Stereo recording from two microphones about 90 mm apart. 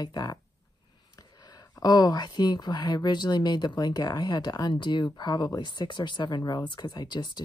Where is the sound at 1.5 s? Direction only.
45° left (ahead or behind).